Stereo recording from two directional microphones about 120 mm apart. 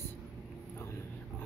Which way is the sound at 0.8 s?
20° left (ahead or behind).